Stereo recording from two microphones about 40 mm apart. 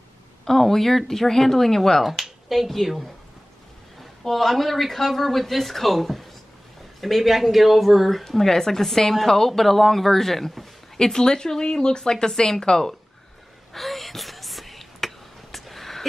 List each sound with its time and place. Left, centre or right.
0.5 s speech: centre
2.0 s speech: centre
4.3 s speech: centre
11.0 s speech: centre
13.7 s whispering: centre